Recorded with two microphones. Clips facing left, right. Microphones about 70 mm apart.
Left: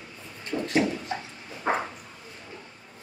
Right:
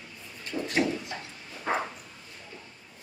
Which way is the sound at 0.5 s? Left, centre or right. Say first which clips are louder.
Left 3 dB; left.